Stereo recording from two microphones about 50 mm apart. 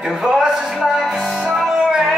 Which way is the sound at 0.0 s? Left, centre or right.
Centre.